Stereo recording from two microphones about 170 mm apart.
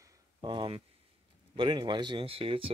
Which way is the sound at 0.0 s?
25° right (ahead or behind).